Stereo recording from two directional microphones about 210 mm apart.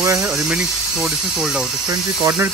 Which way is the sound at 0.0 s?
15° right (ahead or behind).